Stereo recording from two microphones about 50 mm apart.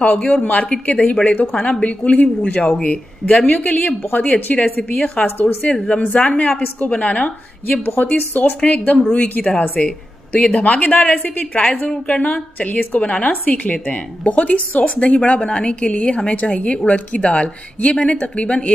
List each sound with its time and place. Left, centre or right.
0.1 s a woman's voice: left
0.7 s a woman's voice: centre
5.2 s speech: left
5.9 s a woman's voice: left
7.8 s a woman's voice: left
11.6 s a woman's voice: centre
12.1 s a woman's voice: left